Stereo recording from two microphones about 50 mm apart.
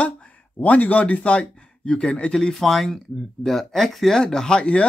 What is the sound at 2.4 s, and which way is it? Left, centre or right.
Speech, centre.